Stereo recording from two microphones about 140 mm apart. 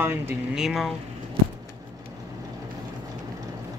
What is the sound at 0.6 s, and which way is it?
Speech, centre (ahead or behind).